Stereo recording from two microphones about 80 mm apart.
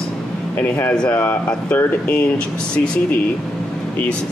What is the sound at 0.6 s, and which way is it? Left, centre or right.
Speech, left.